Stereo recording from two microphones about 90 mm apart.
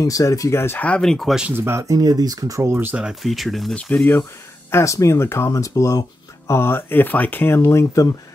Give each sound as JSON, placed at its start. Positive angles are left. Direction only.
{"t": 0.0, "sound": "speech", "side_deg": 40}
{"t": 0.8, "sound": "speech", "side_deg": 10}
{"t": 1.6, "sound": "speech", "side_deg": -30}
{"t": 2.9, "sound": "speech", "side_deg": -10}
{"t": 3.7, "sound": "speech", "side_deg": 15}
{"t": 4.6, "sound": "speech", "side_deg": 30}